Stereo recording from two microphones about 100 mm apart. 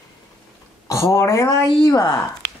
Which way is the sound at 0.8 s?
30° left (ahead or behind).